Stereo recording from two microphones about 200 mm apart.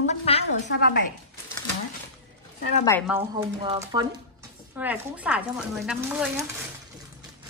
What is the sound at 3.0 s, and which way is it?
Speech, 10° right (ahead or behind).